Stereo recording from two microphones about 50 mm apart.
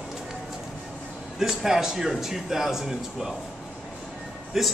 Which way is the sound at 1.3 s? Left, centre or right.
Centre.